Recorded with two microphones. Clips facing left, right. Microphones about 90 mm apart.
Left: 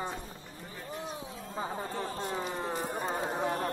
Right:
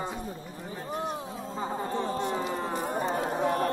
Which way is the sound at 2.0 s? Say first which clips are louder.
Right 7 dB; 20° right (ahead or behind).